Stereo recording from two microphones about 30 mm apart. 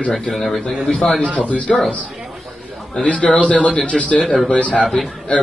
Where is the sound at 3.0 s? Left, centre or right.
Left.